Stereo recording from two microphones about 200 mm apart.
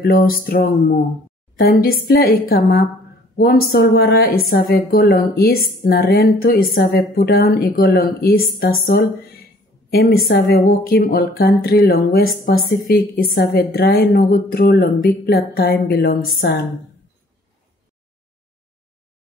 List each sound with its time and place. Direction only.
0.0 s a woman's voice: 50° left (ahead or behind)